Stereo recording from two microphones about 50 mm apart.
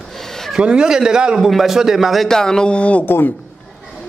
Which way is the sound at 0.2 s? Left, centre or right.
Centre.